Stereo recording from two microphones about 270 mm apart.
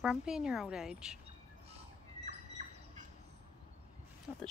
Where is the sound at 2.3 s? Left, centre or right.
Right.